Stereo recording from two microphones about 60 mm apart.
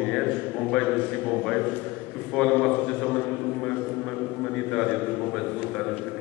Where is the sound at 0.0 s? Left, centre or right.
Centre.